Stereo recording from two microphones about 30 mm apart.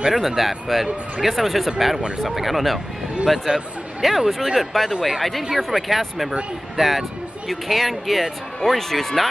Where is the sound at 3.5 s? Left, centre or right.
Right.